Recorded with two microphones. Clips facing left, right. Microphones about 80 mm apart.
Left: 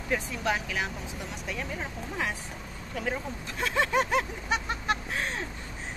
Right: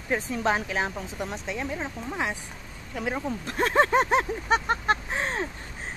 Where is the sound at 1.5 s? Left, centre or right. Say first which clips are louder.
Even; right.